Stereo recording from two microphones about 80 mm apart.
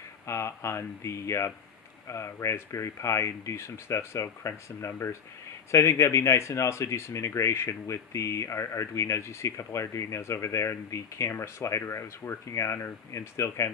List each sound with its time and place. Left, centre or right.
0.3 s speech: left